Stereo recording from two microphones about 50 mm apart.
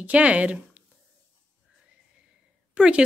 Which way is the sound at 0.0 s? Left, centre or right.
Right.